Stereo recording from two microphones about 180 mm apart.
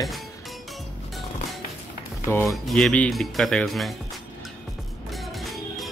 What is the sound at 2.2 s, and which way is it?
Speech, 15° left (ahead or behind).